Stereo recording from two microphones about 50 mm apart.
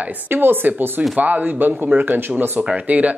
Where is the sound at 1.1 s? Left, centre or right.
Right.